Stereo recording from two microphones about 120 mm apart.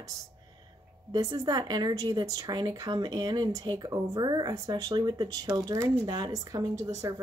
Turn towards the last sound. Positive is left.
turn(degrees=-30)  # may be behind; listen again after turning